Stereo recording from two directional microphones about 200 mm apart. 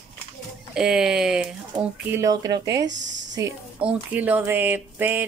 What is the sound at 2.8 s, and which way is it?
Speech, 65° right (ahead or behind).